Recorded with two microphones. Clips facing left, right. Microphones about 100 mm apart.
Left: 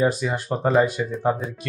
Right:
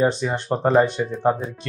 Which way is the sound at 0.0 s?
25° right (ahead or behind).